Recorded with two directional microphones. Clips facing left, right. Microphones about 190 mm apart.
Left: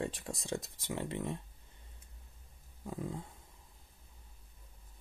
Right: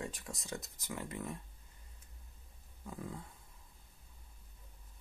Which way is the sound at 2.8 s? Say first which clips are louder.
Left 5 dB; 25° left (ahead or behind).